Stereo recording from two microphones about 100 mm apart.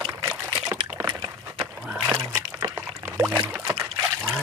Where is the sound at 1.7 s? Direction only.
15° right (ahead or behind).